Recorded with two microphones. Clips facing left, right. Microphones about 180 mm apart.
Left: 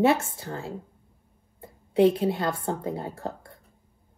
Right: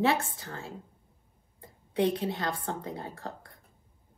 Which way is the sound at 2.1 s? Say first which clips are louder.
Left 6 dB; 30° left (ahead or behind).